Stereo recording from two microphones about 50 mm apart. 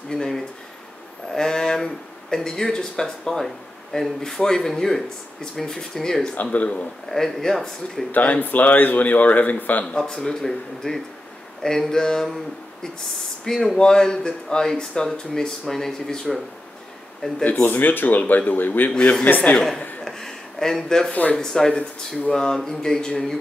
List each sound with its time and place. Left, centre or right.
0.1 s a sound: centre
2.3 s speech: centre
6.4 s speech: left
7.1 s speech: centre
8.1 s a man's voice: left
9.8 s speech: centre
13.7 s speech: centre
17.4 s speech: left
17.6 s a man's voice: left
18.9 s speech: left
19.2 s a man's voice: left
20.1 s speech: centre
21.1 s speech: left
21.4 s speech: centre